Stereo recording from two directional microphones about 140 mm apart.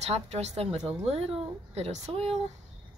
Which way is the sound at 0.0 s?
50° right (ahead or behind).